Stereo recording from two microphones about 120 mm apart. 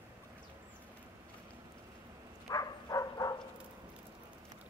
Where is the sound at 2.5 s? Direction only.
30° left (ahead or behind).